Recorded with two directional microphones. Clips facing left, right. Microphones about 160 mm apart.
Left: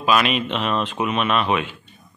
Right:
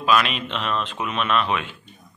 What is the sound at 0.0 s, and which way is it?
A man's voice, 5° left (ahead or behind).